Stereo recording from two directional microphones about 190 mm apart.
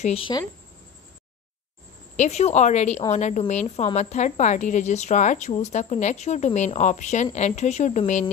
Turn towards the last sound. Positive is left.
turn(degrees=40)  # may be behind; listen again after turning